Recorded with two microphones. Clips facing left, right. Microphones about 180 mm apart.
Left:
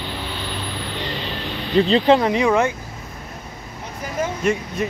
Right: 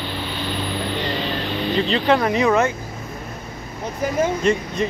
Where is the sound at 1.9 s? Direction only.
25° left (ahead or behind).